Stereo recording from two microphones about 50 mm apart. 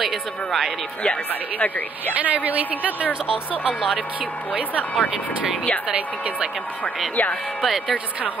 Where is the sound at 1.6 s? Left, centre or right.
Left.